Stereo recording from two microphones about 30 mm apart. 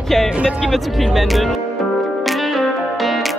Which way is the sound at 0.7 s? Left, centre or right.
Centre.